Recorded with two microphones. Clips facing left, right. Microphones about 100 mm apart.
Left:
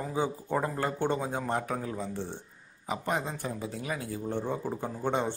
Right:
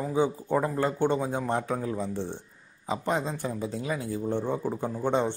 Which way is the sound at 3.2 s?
20° right (ahead or behind).